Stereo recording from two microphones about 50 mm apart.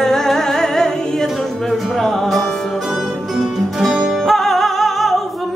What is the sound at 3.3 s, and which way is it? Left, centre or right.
Music, centre.